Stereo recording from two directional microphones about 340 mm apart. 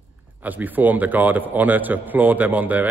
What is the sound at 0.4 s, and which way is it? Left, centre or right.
A man's voice, centre.